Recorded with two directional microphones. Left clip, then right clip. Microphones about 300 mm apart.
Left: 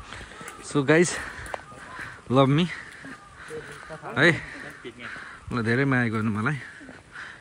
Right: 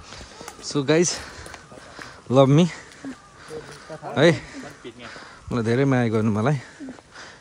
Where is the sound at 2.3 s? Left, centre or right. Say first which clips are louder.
Right 4 dB; centre.